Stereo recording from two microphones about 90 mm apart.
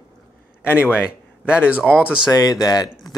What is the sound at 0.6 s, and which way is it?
Speech, 20° left (ahead or behind).